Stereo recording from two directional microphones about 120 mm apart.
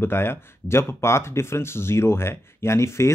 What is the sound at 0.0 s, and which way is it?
Speech, 20° left (ahead or behind).